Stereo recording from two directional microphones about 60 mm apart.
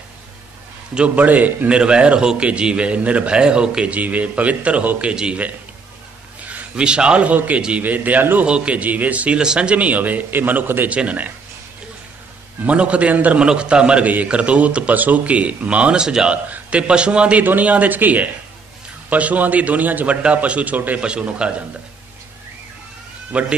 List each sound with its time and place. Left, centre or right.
0.9 s a man's voice: right
5.1 s a man's voice: centre
6.4 s a man's voice: right
8.5 s a man's voice: centre
12.6 s a man's voice: centre
21.0 s a man's voice: centre
23.3 s a man's voice: right